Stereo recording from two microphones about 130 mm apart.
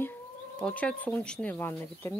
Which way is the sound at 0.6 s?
10° left (ahead or behind).